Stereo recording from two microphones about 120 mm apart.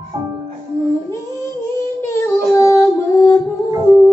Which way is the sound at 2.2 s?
25° left (ahead or behind).